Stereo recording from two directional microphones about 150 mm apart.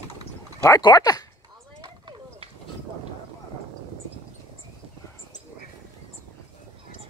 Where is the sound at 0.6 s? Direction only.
25° left (ahead or behind).